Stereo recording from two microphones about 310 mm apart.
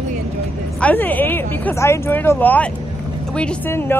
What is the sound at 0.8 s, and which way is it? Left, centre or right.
Speech, centre.